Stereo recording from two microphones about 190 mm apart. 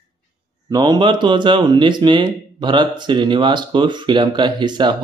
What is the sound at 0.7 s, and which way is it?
Speech, 20° right (ahead or behind).